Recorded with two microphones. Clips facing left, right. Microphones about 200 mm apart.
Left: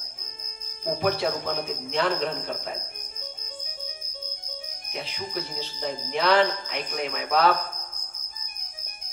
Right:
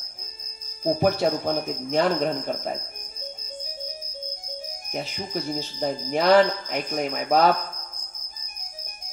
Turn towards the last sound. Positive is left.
turn(degrees=-45)  # may be behind; listen again after turning